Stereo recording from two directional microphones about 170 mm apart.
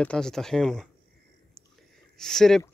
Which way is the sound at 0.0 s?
5° left (ahead or behind).